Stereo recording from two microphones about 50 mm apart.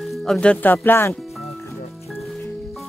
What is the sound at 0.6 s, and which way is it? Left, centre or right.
Music, left.